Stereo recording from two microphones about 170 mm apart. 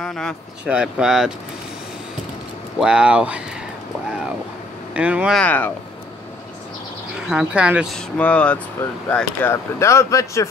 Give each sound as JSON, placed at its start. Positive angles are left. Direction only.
{"t": 0.0, "sound": "speech", "side_deg": 5}
{"t": 2.8, "sound": "speech", "side_deg": -5}
{"t": 4.9, "sound": "speech", "side_deg": -5}
{"t": 5.4, "sound": "speech", "side_deg": 10}
{"t": 7.2, "sound": "speech", "side_deg": -5}
{"t": 8.2, "sound": "speech", "side_deg": 5}